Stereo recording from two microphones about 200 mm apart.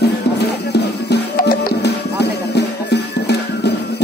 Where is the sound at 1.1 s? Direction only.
55° left (ahead or behind).